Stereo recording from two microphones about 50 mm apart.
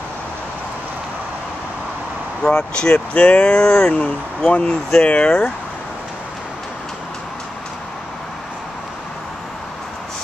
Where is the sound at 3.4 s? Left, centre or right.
Centre.